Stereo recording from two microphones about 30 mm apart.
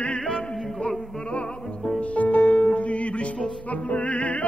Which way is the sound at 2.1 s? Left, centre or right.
Left.